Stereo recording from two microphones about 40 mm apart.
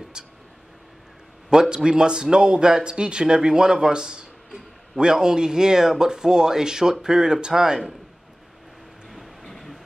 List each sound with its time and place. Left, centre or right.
0.2 s a sound: right
1.5 s speech: centre
9.4 s train: centre